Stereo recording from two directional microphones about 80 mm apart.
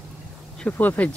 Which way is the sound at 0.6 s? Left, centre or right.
Centre.